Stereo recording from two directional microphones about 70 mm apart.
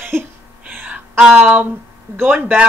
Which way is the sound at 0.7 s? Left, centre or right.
Right.